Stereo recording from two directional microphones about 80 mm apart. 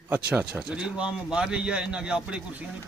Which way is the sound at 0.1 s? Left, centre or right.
Right.